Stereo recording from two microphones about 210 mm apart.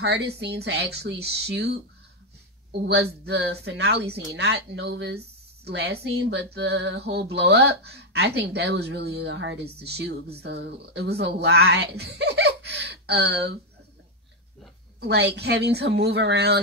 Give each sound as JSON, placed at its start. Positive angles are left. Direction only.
{"t": 0.0, "sound": "speech", "side_deg": -50}
{"t": 2.7, "sound": "a woman's voice", "side_deg": -55}
{"t": 15.0, "sound": "speech", "side_deg": -55}